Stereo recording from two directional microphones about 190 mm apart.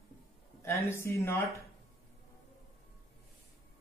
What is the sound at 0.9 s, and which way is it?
Speech, 15° left (ahead or behind).